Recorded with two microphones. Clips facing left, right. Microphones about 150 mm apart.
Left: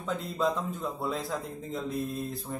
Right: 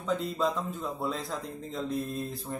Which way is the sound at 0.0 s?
Centre (ahead or behind).